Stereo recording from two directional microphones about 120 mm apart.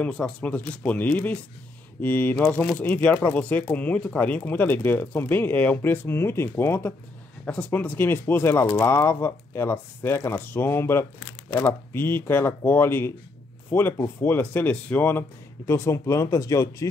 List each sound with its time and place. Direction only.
0.0 s speech: 10° left (ahead or behind); by 16.8 s 25° left (ahead or behind)